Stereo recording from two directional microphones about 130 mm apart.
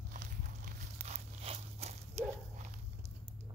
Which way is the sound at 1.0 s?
55° right (ahead or behind).